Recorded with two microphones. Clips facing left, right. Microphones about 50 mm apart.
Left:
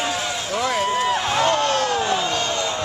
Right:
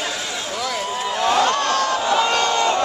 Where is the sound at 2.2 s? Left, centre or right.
Right.